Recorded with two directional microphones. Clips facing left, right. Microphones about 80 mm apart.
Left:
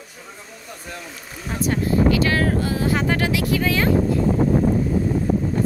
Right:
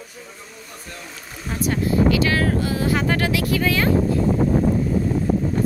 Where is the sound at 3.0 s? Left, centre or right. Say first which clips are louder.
Even; centre.